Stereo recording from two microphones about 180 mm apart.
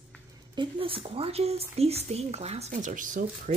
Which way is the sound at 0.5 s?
30° right (ahead or behind).